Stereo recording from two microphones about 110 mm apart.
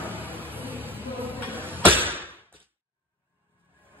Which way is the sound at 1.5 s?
20° right (ahead or behind).